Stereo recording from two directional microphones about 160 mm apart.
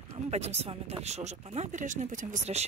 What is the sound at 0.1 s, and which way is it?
A woman's voice, 40° right (ahead or behind).